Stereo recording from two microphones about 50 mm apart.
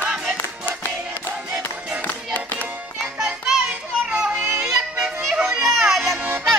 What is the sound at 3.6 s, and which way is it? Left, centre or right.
Children playing, centre.